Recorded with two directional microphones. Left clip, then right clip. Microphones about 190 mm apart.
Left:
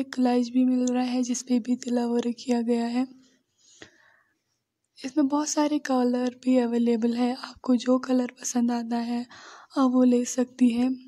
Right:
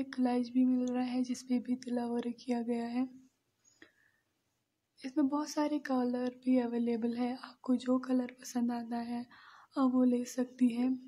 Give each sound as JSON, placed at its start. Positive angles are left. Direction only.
{"t": 0.0, "sound": "speech", "side_deg": 30}
{"t": 3.8, "sound": "a sound", "side_deg": 30}
{"t": 4.9, "sound": "speech", "side_deg": 30}